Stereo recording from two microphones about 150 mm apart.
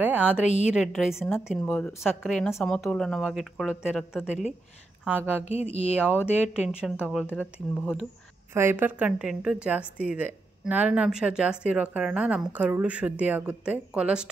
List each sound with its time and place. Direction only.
0.0 s a woman's voice: 10° right (ahead or behind)
1.2 s a woman's voice: 10° left (ahead or behind)
5.4 s a sound: 45° left (ahead or behind)
6.2 s a woman's voice: 5° right (ahead or behind)
8.5 s a woman's voice: 15° right (ahead or behind)